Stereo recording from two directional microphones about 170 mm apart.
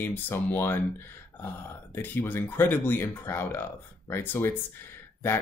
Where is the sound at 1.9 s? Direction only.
10° left (ahead or behind).